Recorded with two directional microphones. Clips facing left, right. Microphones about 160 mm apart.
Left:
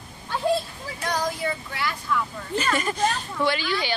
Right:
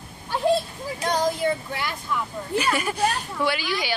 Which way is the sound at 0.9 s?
25° right (ahead or behind).